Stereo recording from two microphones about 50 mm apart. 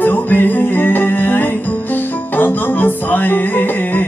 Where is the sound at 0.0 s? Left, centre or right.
Left.